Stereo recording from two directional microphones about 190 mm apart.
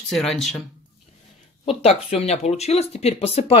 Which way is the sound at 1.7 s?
30° left (ahead or behind).